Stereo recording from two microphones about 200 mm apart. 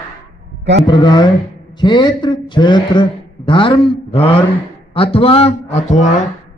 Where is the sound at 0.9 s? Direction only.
20° left (ahead or behind).